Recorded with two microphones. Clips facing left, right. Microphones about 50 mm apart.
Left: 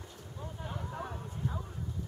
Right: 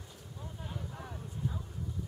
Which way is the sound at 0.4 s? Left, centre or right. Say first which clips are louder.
Left 3 dB; left.